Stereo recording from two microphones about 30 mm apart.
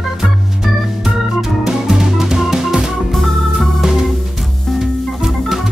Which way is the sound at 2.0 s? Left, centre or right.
Centre.